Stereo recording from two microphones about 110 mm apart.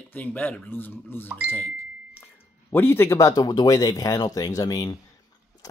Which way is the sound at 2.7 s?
20° left (ahead or behind).